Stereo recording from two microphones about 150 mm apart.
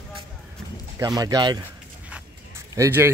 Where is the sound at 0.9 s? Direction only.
25° right (ahead or behind).